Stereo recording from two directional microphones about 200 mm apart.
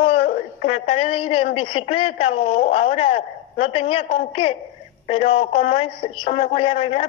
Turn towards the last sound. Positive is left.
turn(degrees=25)  # may be behind; listen again after turning